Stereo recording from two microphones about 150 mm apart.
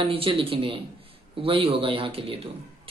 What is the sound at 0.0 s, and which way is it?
Speech, 35° right (ahead or behind).